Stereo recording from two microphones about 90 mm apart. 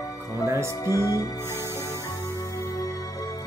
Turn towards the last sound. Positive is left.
turn(degrees=40)  # may be behind; listen again after turning